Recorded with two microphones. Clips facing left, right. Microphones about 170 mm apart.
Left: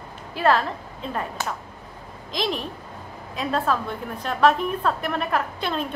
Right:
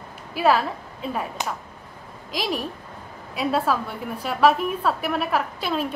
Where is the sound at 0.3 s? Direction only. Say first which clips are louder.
Right 1 dB; 10° right (ahead or behind).